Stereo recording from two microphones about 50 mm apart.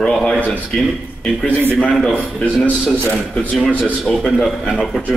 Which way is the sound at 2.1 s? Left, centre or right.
Left.